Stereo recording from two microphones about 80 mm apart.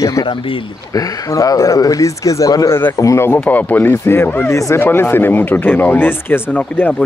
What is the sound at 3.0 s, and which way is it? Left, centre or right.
Speech, left.